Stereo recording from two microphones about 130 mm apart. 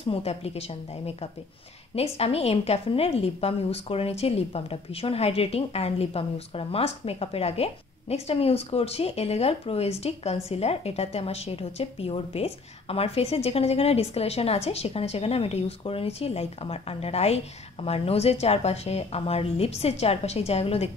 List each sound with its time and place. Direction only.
0.0 s a woman's voice: 50° left (ahead or behind)